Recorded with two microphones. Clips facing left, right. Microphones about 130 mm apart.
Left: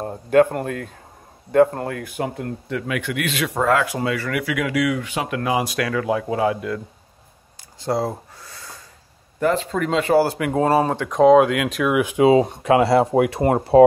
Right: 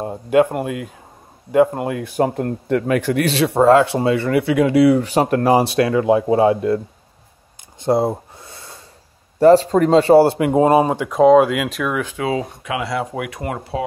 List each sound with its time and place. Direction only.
0.0 s speech: 10° right (ahead or behind)
2.0 s speech: 35° right (ahead or behind)
7.8 s a sound: 25° right (ahead or behind)
9.4 s speech: 35° right (ahead or behind); by 11.9 s centre (ahead or behind)
11.9 s speech: 15° left (ahead or behind)
12.6 s speech: 35° left (ahead or behind)